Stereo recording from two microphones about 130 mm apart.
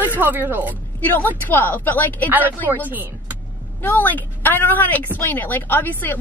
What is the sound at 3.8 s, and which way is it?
Speech, 15° left (ahead or behind).